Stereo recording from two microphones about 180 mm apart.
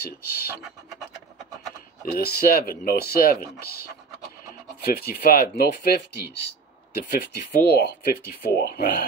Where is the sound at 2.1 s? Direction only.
60° left (ahead or behind).